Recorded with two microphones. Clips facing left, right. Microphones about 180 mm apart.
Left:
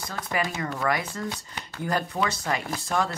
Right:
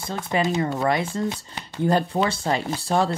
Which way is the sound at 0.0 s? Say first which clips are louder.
Right 5 dB; 25° right (ahead or behind).